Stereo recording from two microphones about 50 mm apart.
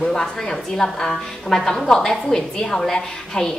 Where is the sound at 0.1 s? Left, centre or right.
Centre.